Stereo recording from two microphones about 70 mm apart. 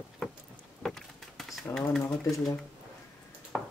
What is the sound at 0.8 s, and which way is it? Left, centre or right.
Vehicle, centre.